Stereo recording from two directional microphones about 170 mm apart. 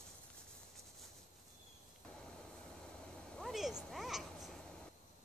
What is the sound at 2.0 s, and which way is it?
Vehicle, 5° left (ahead or behind).